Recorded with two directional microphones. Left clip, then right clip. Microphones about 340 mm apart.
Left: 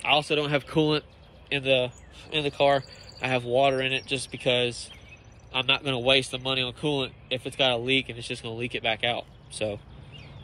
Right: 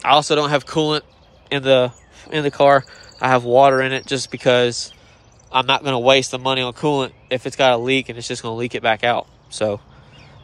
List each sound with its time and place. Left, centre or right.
0.1 s speech: centre
1.5 s speech: right
4.6 s speech: centre
7.1 s speech: right
8.2 s speech: centre
8.7 s speech: right